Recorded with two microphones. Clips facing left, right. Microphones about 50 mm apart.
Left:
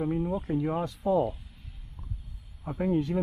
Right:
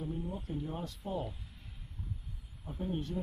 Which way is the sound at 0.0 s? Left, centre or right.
Left.